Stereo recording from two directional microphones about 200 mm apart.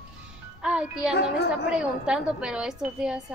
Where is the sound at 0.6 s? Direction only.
5° right (ahead or behind).